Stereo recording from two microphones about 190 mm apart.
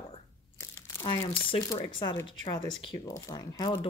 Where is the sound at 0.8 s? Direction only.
25° left (ahead or behind).